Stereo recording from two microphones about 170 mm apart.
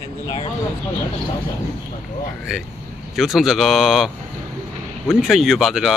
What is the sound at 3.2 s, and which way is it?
Speech, centre (ahead or behind).